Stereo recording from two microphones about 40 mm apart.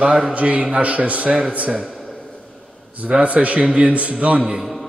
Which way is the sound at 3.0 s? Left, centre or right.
Right.